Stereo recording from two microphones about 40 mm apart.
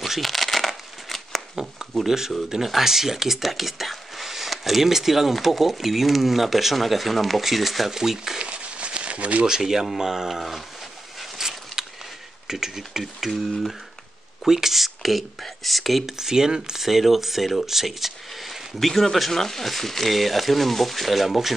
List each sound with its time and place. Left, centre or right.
0.0 s shuffling cards: centre
2.0 s speech: centre
8.4 s crumpling: right
9.5 s speech: centre
11.1 s a sound: centre
12.4 s speech: centre
16.2 s speech: centre
16.8 s speech: centre